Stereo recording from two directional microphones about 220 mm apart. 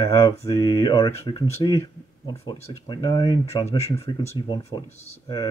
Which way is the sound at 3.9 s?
15° left (ahead or behind).